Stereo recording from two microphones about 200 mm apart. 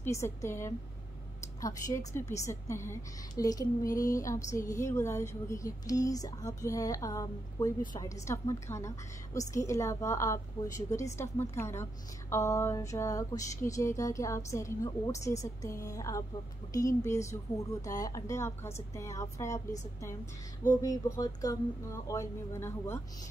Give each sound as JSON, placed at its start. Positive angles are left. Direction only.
{"t": 0.0, "sound": "a woman's voice", "side_deg": 15}
{"t": 20.8, "sound": "a woman's voice", "side_deg": 20}